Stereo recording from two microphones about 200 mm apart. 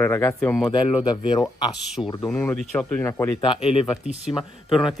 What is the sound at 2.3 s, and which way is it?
Speech, 10° left (ahead or behind).